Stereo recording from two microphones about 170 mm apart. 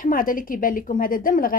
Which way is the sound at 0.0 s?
55° left (ahead or behind).